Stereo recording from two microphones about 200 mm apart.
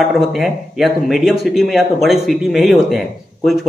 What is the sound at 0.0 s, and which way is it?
Speech, centre (ahead or behind).